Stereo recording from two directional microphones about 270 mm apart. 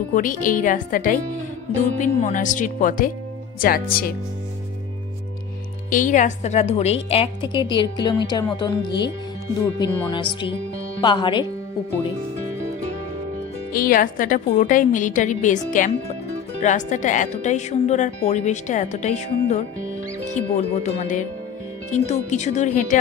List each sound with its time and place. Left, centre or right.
0.1 s a woman's voice: left
5.9 s a woman's voice: left
13.7 s a woman's voice: left